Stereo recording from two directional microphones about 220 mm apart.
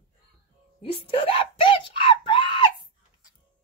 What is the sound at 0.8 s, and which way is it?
Screaming, 25° left (ahead or behind).